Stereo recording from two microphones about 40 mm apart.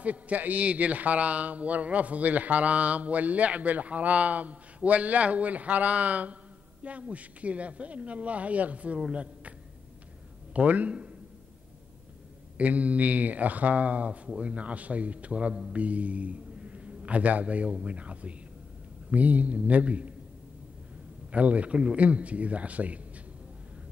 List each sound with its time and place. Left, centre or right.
0.0 s a man's voice: right
10.5 s a man's voice: right
12.5 s a man's voice: right
21.3 s a man's voice: right